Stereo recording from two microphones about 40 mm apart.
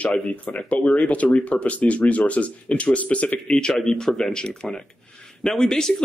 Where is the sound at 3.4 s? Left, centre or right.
Centre.